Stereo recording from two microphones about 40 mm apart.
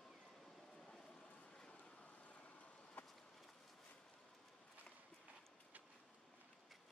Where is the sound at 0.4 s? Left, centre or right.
Centre.